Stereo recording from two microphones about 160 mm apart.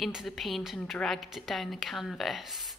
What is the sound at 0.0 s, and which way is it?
A woman's voice, centre (ahead or behind).